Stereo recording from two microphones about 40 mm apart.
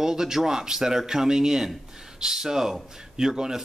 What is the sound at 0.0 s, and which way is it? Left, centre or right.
Speech, centre.